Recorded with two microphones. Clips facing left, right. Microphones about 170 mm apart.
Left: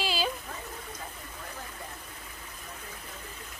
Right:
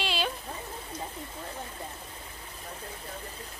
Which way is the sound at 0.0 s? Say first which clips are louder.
Even; centre (ahead or behind).